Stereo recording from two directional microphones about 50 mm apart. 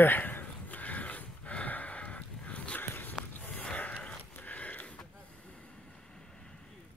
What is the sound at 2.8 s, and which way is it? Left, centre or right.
Walk, left.